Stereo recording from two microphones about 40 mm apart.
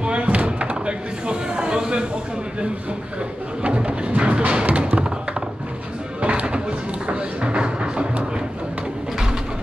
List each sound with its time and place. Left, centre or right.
0.0 s slam: right
3.6 s music: right
6.2 s a sound: right
7.1 s music: right